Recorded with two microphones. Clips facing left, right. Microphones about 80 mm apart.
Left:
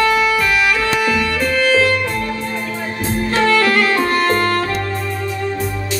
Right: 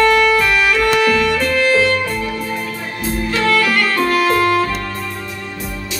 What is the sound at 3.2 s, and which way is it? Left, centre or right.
Music, left.